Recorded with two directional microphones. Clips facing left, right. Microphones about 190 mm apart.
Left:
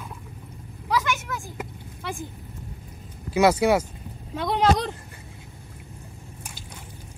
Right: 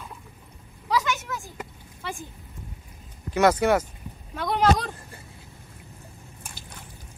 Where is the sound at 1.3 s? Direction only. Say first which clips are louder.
Left 2 dB; 15° left (ahead or behind).